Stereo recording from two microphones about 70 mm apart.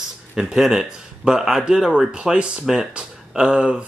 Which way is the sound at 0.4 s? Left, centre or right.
Centre.